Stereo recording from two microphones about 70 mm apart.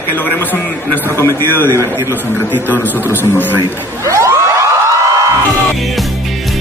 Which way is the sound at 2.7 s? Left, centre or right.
Right.